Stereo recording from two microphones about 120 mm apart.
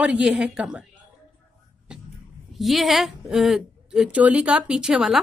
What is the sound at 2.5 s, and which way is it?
A woman's voice, centre (ahead or behind).